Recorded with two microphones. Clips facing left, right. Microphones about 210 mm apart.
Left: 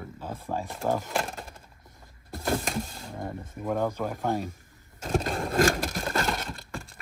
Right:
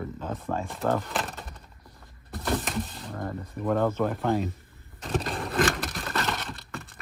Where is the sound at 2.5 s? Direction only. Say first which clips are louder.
Even; centre (ahead or behind).